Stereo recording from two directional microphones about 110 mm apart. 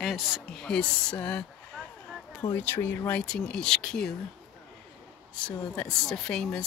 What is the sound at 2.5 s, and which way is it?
A woman's voice, 20° left (ahead or behind).